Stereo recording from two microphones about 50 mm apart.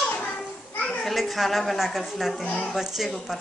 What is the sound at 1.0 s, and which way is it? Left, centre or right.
A woman's voice, centre.